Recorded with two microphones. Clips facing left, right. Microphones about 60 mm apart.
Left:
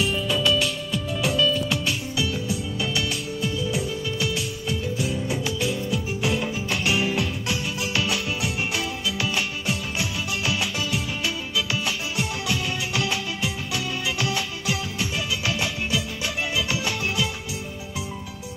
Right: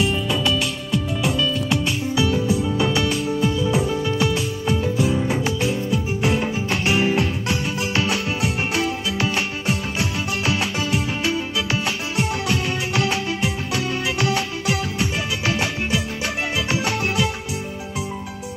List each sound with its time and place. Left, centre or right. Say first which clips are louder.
0.0 s music: right 2 dB; centre
1.4 s music: right 1 dB; right
2.1 s music: right 7 dB; right